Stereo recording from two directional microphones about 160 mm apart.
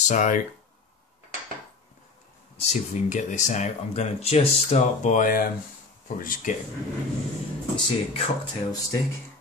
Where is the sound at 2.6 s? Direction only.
50° left (ahead or behind).